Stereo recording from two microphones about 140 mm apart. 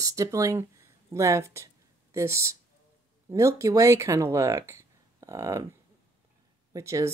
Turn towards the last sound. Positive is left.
turn(degrees=-20)  # may be behind; listen again after turning